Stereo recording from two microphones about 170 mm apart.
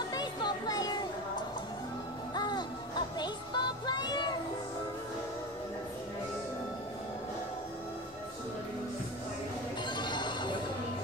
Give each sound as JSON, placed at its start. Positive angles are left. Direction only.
{"t": 0.1, "sound": "a sound", "side_deg": 25}
{"t": 2.3, "sound": "music", "side_deg": 25}
{"t": 9.8, "sound": "music", "side_deg": 25}